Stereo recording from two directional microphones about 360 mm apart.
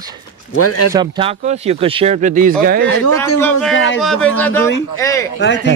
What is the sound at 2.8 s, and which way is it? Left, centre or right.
Speech, left.